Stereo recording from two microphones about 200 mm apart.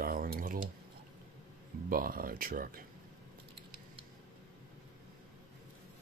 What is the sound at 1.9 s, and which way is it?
Speech, 45° right (ahead or behind).